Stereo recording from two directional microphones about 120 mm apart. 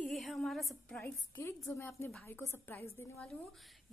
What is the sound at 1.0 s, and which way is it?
A woman's voice, 15° left (ahead or behind).